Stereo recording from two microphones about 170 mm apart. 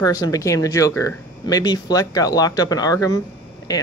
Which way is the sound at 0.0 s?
20° left (ahead or behind).